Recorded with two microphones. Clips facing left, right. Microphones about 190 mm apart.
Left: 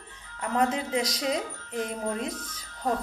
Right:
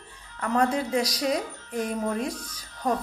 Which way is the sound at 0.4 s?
20° left (ahead or behind).